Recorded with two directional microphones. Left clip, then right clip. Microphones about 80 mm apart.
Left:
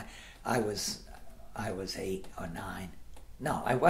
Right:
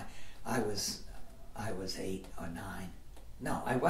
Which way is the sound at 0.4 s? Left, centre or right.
Left.